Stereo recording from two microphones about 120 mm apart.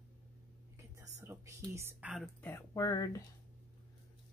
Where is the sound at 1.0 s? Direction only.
25° right (ahead or behind).